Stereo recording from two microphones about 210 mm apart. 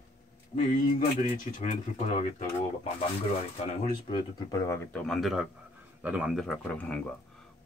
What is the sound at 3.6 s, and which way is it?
Speech, 30° left (ahead or behind).